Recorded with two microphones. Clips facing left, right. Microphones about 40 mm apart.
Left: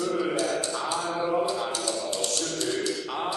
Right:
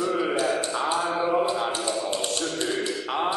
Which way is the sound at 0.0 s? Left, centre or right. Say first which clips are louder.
Right 2 dB; right.